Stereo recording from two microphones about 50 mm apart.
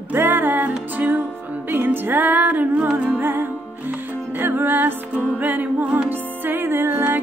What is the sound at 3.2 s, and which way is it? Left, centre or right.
Music, right.